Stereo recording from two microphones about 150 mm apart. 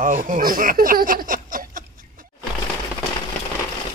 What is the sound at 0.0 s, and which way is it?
Speech, 65° right (ahead or behind).